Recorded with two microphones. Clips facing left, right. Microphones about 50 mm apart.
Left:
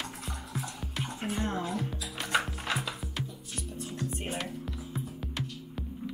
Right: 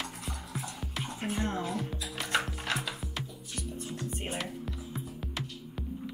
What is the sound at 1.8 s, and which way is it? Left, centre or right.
Music, centre.